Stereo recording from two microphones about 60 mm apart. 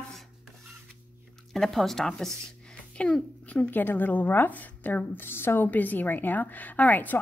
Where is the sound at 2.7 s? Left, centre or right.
Left.